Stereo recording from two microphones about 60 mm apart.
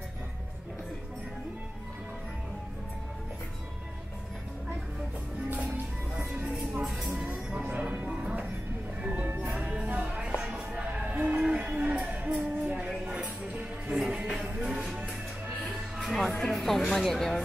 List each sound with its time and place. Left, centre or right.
5.5 s music: right
6.3 s music: centre
11.1 s a sound: right
12.4 s music: right; by 15.0 s centre
16.0 s music: centre
16.3 s a sound: centre